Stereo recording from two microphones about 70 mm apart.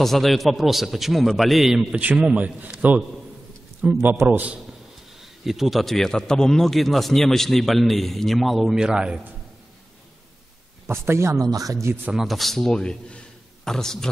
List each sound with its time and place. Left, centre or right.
0.0 s a man's voice: centre
2.0 s a man's voice: centre
3.8 s a man's voice: right
5.1 s a man's voice: centre
8.7 s a man's voice: centre
10.9 s speech: right
11.4 s speech: right
12.1 s a man's voice: centre